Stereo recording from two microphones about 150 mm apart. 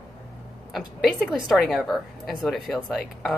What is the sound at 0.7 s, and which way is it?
A woman's voice, centre (ahead or behind).